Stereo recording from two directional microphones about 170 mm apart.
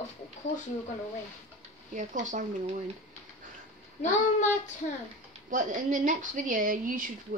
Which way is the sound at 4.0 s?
45° left (ahead or behind).